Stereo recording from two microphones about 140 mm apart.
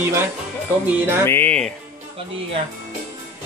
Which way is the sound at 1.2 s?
15° left (ahead or behind).